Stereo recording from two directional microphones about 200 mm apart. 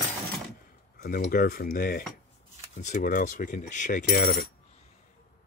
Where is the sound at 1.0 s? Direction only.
50° left (ahead or behind).